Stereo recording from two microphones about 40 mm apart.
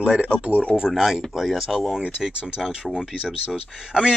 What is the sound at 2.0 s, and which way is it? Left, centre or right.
Speech, right.